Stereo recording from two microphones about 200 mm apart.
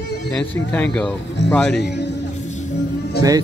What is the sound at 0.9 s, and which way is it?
Speech, 5° left (ahead or behind).